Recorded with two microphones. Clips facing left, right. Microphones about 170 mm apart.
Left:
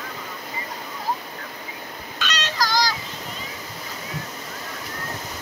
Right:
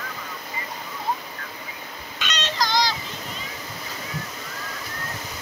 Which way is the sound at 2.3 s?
20° right (ahead or behind).